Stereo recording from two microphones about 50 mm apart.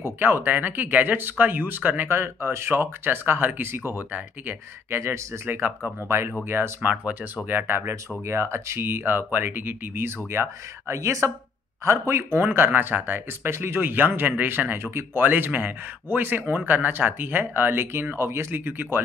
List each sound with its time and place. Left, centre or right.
0.0 s speech: right
2.0 s speech: right
2.7 s speech: right
4.9 s speech: right
5.6 s speech: right
6.0 s speech: right
6.8 s speech: right
7.4 s speech: right
8.3 s speech: right
11.8 s speech: right
12.4 s speech: right
15.2 s speech: right
18.1 s speech: right
18.5 s speech: right